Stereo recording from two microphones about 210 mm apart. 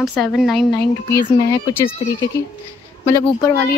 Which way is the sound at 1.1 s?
15° left (ahead or behind).